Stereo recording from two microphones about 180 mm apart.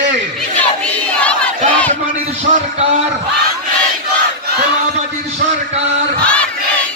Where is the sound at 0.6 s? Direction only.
5° left (ahead or behind).